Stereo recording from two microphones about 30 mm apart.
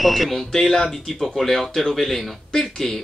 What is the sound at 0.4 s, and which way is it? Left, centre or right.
Speech, centre.